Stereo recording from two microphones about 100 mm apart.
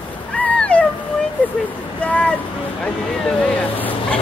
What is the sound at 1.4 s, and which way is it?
Vehicle, 15° left (ahead or behind).